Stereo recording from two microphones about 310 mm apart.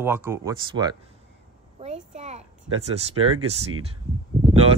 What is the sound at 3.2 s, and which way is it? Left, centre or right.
Speech, right.